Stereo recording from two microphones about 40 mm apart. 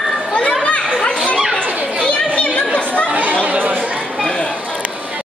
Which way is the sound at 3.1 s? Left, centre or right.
Right.